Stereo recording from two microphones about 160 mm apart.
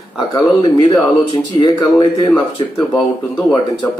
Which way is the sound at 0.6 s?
35° left (ahead or behind).